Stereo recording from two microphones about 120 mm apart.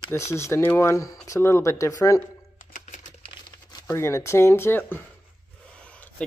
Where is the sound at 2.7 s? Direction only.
90° left.